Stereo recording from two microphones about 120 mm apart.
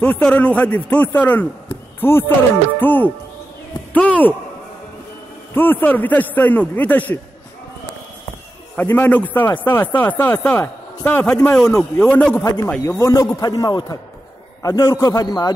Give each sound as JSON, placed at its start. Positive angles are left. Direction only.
{"t": 0.0, "sound": "speech", "side_deg": 10}
{"t": 5.5, "sound": "speech", "side_deg": 15}
{"t": 8.7, "sound": "speech", "side_deg": 15}
{"t": 11.5, "sound": "a man's voice", "side_deg": 5}
{"t": 12.4, "sound": "a man's voice", "side_deg": 20}